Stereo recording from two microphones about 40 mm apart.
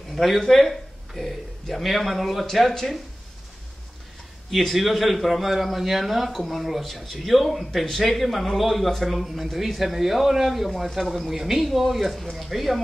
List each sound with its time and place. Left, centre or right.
0.1 s speech: centre
4.5 s a man's voice: centre